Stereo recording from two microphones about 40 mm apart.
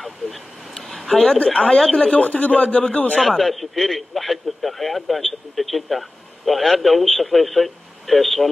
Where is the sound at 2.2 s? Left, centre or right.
Left.